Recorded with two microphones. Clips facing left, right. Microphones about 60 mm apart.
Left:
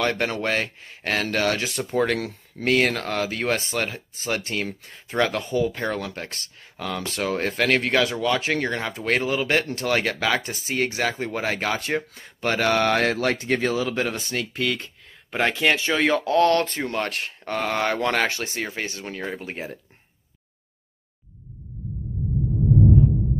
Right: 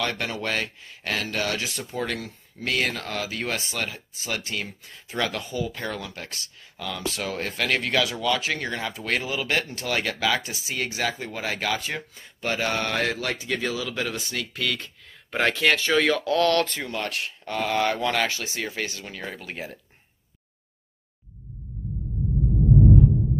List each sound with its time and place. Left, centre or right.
0.0 s speech: left
2.1 s speech: left
2.6 s speech: left
5.9 s speech: left
15.3 s speech: centre
16.8 s speech: left